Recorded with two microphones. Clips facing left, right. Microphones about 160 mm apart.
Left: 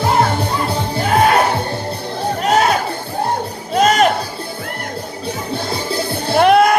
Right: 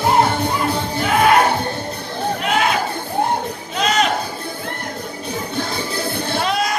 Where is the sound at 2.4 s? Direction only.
40° left (ahead or behind).